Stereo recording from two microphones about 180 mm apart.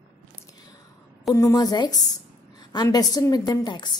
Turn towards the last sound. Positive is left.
turn(degrees=25)  # may be behind; listen again after turning